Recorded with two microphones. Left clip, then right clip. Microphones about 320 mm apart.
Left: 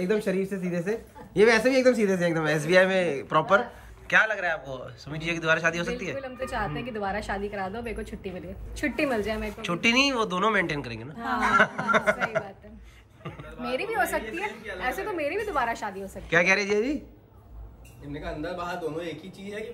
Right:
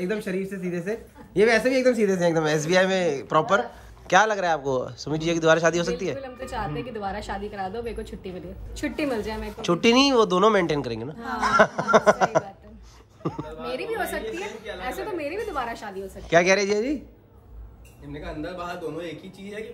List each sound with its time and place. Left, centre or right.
0.0 s speech: centre
13.7 s speech: centre
18.1 s speech: centre